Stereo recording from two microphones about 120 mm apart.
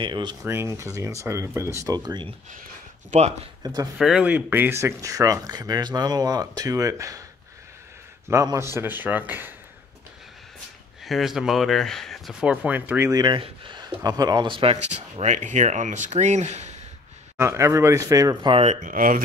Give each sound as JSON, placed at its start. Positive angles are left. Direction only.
{"t": 0.0, "sound": "speech", "side_deg": -40}
{"t": 0.4, "sound": "speech", "side_deg": -20}
{"t": 2.0, "sound": "speech", "side_deg": -35}
{"t": 3.1, "sound": "speech", "side_deg": -65}
{"t": 3.6, "sound": "speech", "side_deg": -30}
{"t": 4.0, "sound": "speech", "side_deg": -10}
{"t": 8.3, "sound": "a man's voice", "side_deg": -25}
{"t": 11.1, "sound": "speech", "side_deg": 0}
{"t": 13.1, "sound": "speech", "side_deg": -35}
{"t": 17.4, "sound": "speech", "side_deg": -20}
{"t": 18.4, "sound": "speech", "side_deg": -45}
{"t": 18.7, "sound": "speech", "side_deg": -90}